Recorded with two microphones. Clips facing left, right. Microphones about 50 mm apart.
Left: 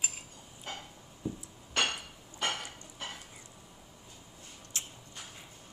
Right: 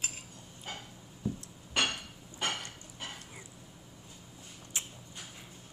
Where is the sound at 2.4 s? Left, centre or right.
Centre.